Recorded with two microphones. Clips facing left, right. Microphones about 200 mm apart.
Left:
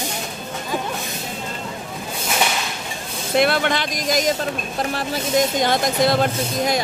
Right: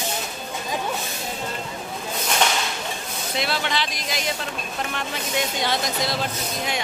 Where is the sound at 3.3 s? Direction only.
55° left (ahead or behind).